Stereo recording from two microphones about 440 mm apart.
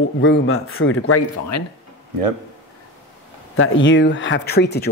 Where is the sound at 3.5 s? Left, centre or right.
Left.